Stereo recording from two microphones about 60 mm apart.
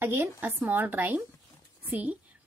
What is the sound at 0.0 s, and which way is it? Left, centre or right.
A woman's voice, right.